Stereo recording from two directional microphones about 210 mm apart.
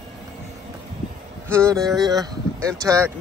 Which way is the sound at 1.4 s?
10° right (ahead or behind).